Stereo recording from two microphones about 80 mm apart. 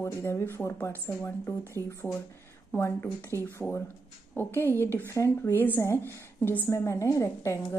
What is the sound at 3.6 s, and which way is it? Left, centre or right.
Speech, centre.